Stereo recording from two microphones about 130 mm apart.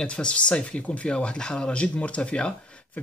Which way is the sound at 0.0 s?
10° left (ahead or behind).